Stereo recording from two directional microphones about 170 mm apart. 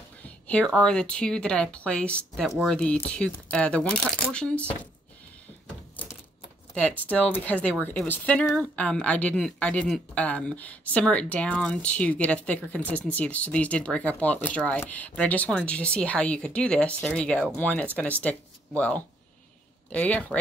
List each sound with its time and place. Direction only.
0.2 s speech: 10° left (ahead or behind)
6.0 s typewriter: 30° left (ahead or behind)
6.7 s speech: 5° left (ahead or behind)